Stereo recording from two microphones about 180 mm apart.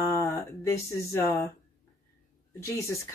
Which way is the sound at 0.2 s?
15° left (ahead or behind).